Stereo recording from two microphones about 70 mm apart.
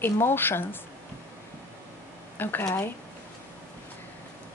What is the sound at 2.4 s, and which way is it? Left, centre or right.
Speech, left.